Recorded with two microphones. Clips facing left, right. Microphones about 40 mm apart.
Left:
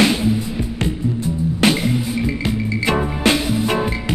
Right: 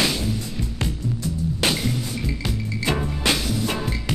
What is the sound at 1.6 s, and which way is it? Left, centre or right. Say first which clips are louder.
Music: left 7 dB; left.